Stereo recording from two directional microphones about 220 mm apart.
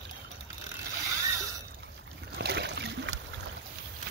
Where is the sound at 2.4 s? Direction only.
50° right (ahead or behind).